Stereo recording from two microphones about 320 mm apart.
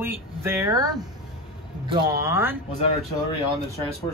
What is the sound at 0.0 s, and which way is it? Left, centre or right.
Speech, centre.